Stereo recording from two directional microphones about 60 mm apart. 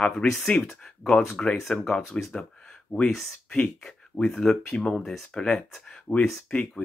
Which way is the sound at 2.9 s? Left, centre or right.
Left.